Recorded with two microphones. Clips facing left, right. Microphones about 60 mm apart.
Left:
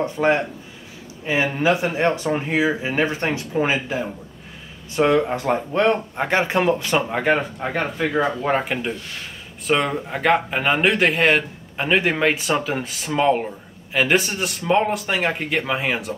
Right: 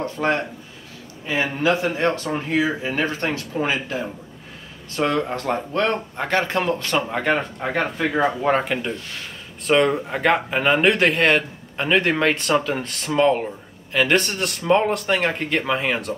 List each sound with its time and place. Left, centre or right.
0.0 s speech: centre